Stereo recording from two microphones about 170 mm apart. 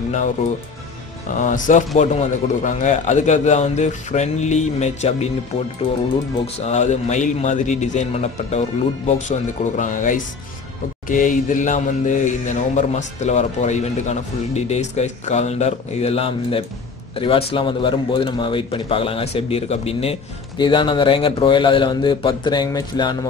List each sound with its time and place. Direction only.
1.3 s speech: 45° left (ahead or behind)
6.4 s a man's voice: 40° left (ahead or behind); by 23.1 s 25° left (ahead or behind)